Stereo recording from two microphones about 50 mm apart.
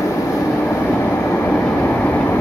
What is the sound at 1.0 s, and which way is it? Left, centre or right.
Train, left.